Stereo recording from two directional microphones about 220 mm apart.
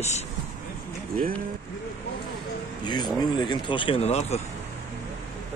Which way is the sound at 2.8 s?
20° left (ahead or behind).